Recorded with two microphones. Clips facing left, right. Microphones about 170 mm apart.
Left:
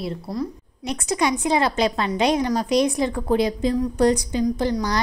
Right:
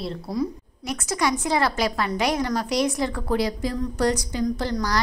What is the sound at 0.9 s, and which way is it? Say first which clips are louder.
A woman's voice: left 2 dB; 20° left (ahead or behind).